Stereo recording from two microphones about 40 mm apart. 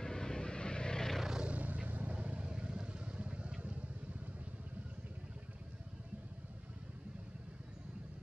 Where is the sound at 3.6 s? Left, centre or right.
Right.